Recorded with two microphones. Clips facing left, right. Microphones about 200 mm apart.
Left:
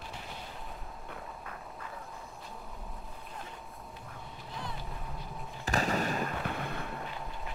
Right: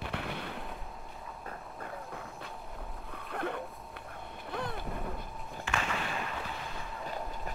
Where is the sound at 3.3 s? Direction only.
65° right (ahead or behind).